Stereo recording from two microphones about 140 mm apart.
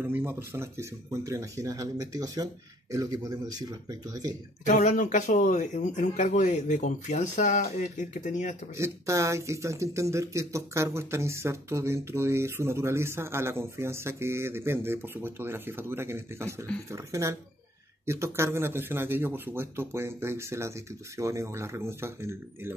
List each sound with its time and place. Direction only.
0.0 s speech: 15° right (ahead or behind)
4.6 s speech: 65° left (ahead or behind)
8.7 s speech: 20° right (ahead or behind)